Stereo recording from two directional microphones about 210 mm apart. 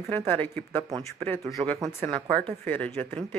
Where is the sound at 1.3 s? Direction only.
5° left (ahead or behind).